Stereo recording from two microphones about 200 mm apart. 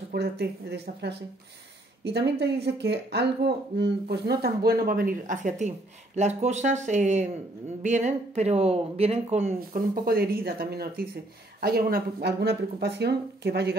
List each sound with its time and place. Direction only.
0.1 s speech: 55° right (ahead or behind); by 9.6 s 35° right (ahead or behind)
9.6 s speech: 50° right (ahead or behind)